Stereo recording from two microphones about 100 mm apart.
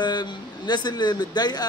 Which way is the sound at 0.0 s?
45° left (ahead or behind).